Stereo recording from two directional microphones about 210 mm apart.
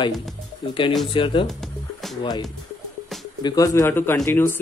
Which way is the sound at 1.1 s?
25° left (ahead or behind).